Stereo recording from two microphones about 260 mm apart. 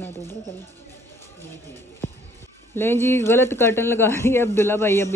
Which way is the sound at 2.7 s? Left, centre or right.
Centre.